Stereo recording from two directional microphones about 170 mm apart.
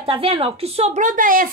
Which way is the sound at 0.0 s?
35° right (ahead or behind).